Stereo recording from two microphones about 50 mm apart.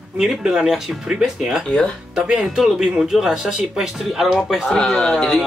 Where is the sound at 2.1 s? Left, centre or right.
Centre.